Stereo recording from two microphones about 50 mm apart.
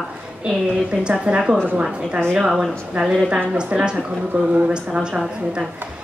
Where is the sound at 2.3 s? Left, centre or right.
Centre.